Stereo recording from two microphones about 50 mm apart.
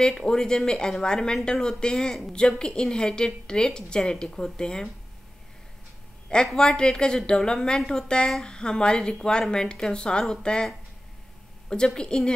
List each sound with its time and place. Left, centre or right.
0.0 s speech: centre
6.2 s speech: centre
11.7 s speech: centre